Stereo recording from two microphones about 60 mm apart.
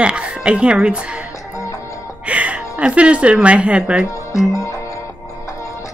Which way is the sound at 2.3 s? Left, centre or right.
Right.